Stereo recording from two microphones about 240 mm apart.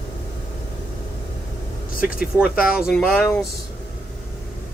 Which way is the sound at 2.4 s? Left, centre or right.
Centre.